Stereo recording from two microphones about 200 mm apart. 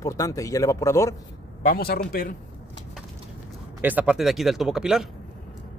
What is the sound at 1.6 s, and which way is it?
Speech, 45° left (ahead or behind).